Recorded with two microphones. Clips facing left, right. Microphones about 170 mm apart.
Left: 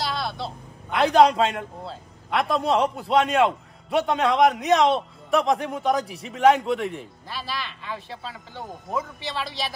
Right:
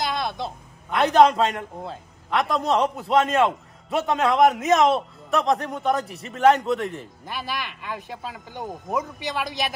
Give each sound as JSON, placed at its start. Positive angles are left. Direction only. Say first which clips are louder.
{"t": 0.0, "sound": "a sound", "louder": "right 2 dB", "side_deg": -20}
{"t": 0.8, "sound": "a man's voice", "louder": "right 1 dB", "side_deg": 0}
{"t": 7.2, "sound": "speech", "louder": "right 2 dB", "side_deg": -15}
{"t": 8.6, "sound": "a man's voice", "louder": "right 2 dB", "side_deg": 0}
{"t": 9.2, "sound": "speech", "louder": "right 3 dB", "side_deg": -15}